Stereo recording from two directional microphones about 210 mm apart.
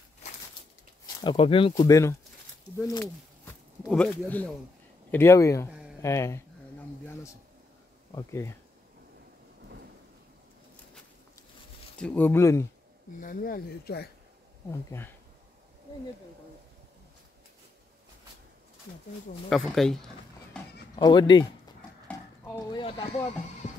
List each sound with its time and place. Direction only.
1.2 s speech: 25° left (ahead or behind)
3.9 s speech: 5° left (ahead or behind)
5.7 s a sound: 5° right (ahead or behind)
6.0 s speech: 15° left (ahead or behind)
8.1 s speech: 15° left (ahead or behind)
12.0 s speech: 10° left (ahead or behind)
13.2 s speech: 45° left (ahead or behind)
14.7 s speech: 10° left (ahead or behind)
19.5 s speech: centre (ahead or behind)
20.5 s a sound: 5° left (ahead or behind)
20.9 s speech: 20° left (ahead or behind)
22.0 s a sound: 10° left (ahead or behind)